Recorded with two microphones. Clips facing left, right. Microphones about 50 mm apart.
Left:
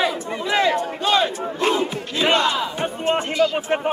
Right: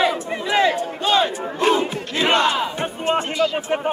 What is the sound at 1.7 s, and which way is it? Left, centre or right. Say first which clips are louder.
Battle cry: right 2 dB; right.